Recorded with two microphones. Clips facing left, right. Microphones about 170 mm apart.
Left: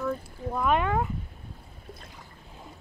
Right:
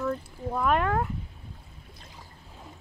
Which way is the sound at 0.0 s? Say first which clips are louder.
Right 1 dB; centre (ahead or behind).